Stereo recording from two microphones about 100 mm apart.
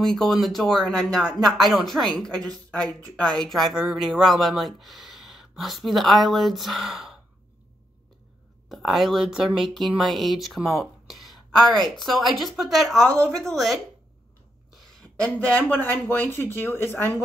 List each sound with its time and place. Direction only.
0.0 s speech: 5° left (ahead or behind)
8.6 s a woman's voice: centre (ahead or behind)
15.0 s speech: 10° left (ahead or behind)